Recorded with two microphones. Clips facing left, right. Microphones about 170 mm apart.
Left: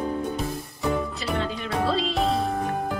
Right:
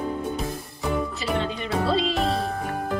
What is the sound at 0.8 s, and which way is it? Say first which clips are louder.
Music: even; centre (ahead or behind).